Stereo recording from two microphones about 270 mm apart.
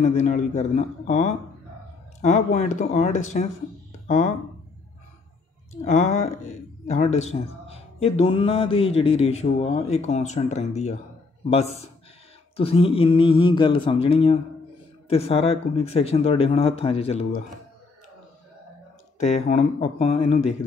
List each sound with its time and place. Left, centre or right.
0.0 s a man's voice: left
5.9 s a man's voice: left
19.1 s a man's voice: left